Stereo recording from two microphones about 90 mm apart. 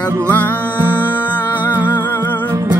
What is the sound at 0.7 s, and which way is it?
Music, 20° right (ahead or behind).